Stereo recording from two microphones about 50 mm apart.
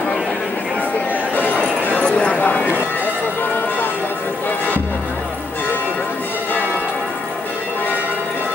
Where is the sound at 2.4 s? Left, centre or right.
Left.